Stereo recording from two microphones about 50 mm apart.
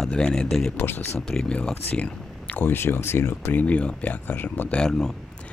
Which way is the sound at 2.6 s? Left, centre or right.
Left.